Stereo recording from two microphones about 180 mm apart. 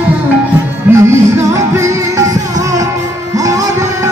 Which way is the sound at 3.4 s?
20° right (ahead or behind).